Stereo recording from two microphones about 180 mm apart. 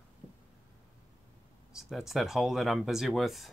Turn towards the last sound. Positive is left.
turn(degrees=0)  # may be behind; listen again after turning